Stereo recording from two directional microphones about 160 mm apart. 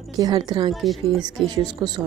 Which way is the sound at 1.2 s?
25° right (ahead or behind).